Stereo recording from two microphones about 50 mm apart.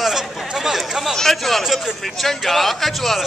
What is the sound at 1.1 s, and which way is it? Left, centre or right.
Speech, centre.